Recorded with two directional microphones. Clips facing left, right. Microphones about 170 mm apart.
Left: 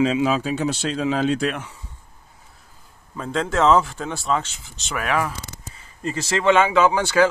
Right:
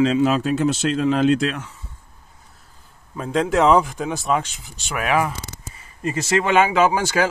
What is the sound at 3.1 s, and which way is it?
Speech, 15° right (ahead or behind).